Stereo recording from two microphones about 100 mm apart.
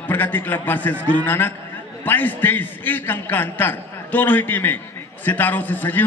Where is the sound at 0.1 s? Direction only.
20° left (ahead or behind).